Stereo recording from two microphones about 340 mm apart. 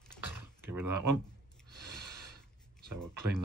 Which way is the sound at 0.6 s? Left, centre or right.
Centre.